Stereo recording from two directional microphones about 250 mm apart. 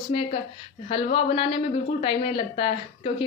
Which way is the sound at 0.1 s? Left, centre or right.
Left.